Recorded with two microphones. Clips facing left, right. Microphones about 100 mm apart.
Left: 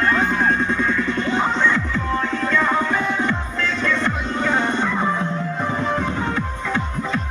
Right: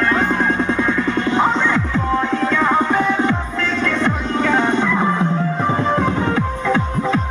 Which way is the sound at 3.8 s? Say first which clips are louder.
Right 2 dB; 90° right.